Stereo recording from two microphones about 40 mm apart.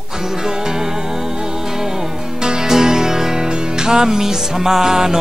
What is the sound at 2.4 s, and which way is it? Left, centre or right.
Music, centre.